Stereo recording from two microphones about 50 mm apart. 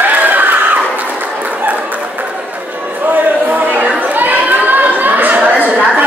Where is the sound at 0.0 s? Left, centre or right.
Right.